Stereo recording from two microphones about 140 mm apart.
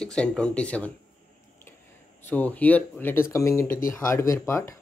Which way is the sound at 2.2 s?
10° left (ahead or behind).